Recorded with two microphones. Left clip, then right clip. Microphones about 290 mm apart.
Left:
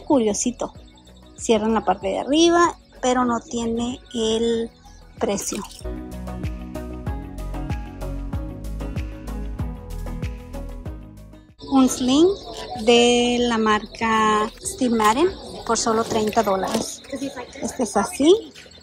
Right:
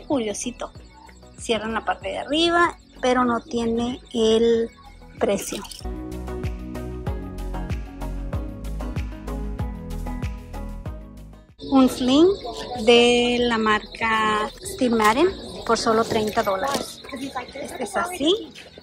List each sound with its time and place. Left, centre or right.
0.1 s speech: centre
11.7 s speech: centre
17.9 s speech: centre